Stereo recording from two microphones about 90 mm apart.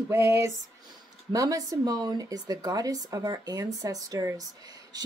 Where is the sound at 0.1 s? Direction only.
30° right (ahead or behind).